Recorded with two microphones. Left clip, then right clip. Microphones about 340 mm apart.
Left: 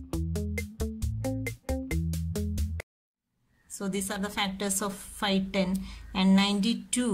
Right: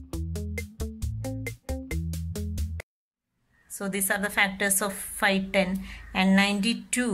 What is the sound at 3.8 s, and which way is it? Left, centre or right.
Speech, right.